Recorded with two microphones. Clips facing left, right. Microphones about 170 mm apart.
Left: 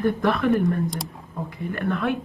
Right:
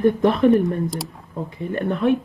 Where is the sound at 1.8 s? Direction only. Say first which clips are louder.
Right 5 dB; 20° right (ahead or behind).